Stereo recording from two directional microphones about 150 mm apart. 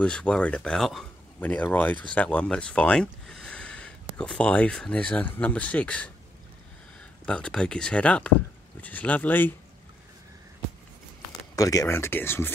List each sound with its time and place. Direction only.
0.0 s speech: 5° left (ahead or behind)
7.2 s speech: 5° left (ahead or behind)
11.5 s speech: 20° left (ahead or behind)